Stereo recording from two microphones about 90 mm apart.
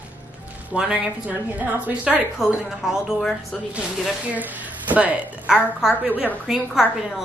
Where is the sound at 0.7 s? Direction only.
10° right (ahead or behind).